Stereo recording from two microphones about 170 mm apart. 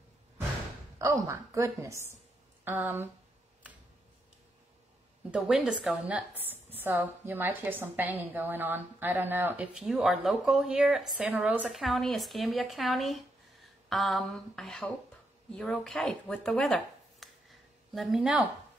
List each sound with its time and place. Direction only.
0.9 s a woman's voice: 20° right (ahead or behind)
5.3 s a woman's voice: 5° right (ahead or behind)